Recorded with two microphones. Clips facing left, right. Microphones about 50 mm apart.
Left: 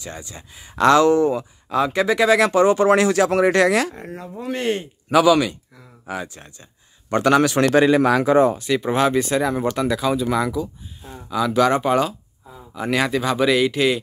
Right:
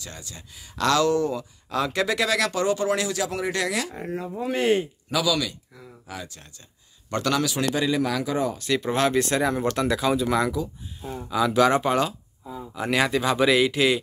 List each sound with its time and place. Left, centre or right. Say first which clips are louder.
0.0 s speech: left 6 dB; left
1.8 s speech: left 6 dB; centre
2.3 s speech: left 8 dB; left
3.9 s speech: right 2 dB; centre
5.1 s speech: left 9 dB; left
7.4 s speech: left 9 dB; left
8.5 s speech: left 4 dB; centre